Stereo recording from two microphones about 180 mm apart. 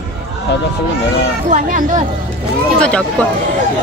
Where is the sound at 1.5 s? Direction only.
45° right (ahead or behind).